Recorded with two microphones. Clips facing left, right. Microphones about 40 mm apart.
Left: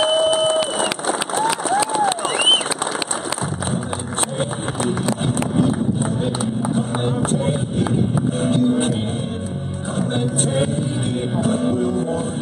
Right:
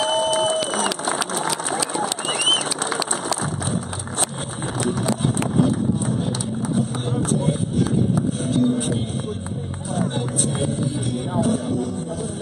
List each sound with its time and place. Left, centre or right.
0.0 s a sound: left
1.8 s crowd: left
8.4 s music: left
10.1 s vehicle: left
11.6 s music: left